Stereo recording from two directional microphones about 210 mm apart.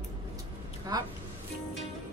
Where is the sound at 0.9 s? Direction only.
15° right (ahead or behind).